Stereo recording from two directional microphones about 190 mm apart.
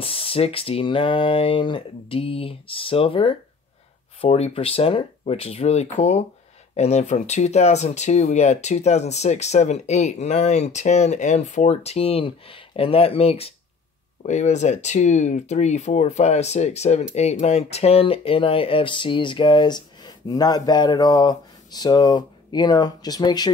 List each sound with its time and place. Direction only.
0.0 s speech: 30° left (ahead or behind)